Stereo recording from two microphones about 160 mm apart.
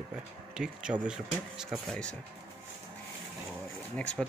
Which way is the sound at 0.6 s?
5° right (ahead or behind).